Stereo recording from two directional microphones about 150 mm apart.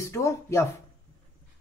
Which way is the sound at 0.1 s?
20° left (ahead or behind).